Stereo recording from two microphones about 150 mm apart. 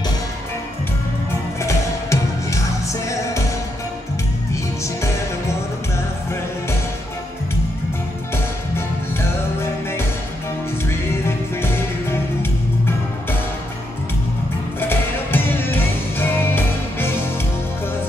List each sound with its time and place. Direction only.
1.6 s music: 20° left (ahead or behind)
10.9 s music: 15° left (ahead or behind)
14.8 s music: 15° left (ahead or behind)